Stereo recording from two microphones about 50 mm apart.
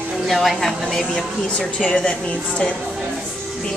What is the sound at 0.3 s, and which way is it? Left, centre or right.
A woman's voice, centre.